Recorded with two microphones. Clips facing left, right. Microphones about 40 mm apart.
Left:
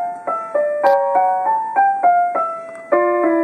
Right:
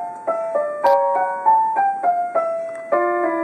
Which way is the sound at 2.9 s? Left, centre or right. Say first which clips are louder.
Left 4 dB; centre.